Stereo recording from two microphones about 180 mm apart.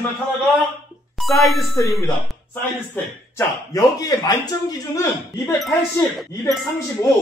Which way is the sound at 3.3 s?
20° left (ahead or behind).